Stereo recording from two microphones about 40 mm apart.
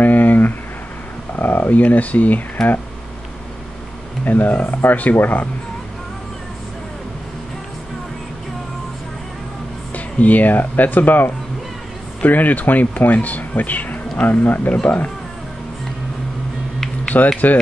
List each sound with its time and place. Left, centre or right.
0.0 s a sound: left
1.7 s speech: left
4.2 s speech: left
9.9 s speech: left
17.1 s speech: left